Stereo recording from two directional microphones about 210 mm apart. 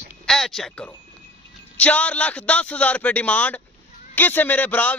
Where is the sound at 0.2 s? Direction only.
Centre (ahead or behind).